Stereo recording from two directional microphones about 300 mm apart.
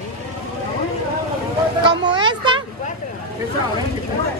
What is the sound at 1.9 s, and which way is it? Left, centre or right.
Speech, centre.